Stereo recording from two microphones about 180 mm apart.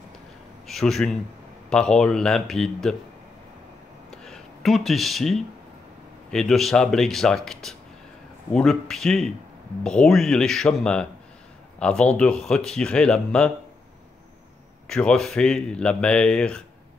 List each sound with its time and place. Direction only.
0.7 s a man's voice: centre (ahead or behind)
4.1 s a sound: centre (ahead or behind)
6.3 s speech: centre (ahead or behind)
14.9 s speech: 5° left (ahead or behind)